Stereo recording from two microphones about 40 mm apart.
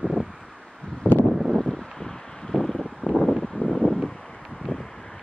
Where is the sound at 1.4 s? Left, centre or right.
Centre.